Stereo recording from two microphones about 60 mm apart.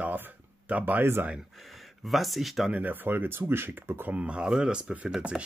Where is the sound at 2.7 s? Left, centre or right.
Right.